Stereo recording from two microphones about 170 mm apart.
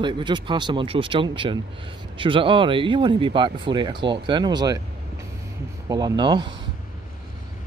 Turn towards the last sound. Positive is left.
turn(degrees=-25)  # may be behind; listen again after turning